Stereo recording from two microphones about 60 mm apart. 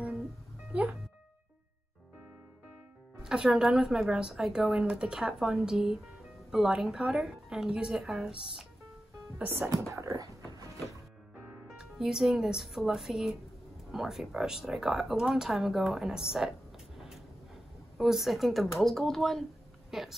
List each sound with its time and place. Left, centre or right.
3.2 s a woman's voice: centre
9.4 s speech: right
9.8 s speech: right
10.1 s a sound: right
11.6 s speech: centre
17.9 s speech: centre